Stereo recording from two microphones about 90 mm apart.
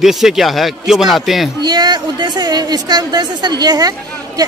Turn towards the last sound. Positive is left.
turn(degrees=-45)  # may be behind; listen again after turning